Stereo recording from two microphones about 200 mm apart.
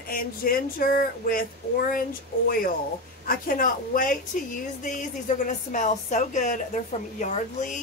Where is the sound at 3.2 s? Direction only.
45° left (ahead or behind).